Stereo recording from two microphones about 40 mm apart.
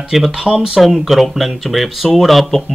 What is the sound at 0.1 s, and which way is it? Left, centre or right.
Speech, centre.